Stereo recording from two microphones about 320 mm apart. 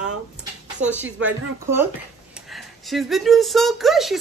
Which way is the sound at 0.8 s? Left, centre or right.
Right.